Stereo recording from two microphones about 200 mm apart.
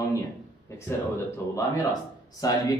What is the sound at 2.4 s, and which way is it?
Speech, 15° left (ahead or behind).